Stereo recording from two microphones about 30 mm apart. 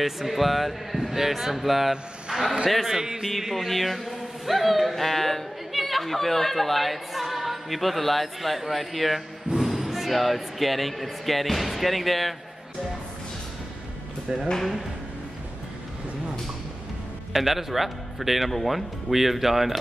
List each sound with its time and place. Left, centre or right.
0.0 s speech: centre
2.4 s a man's voice: centre
2.7 s speech: centre
3.0 s a man's voice: centre
3.3 s a man's voice: centre
17.3 s speech: centre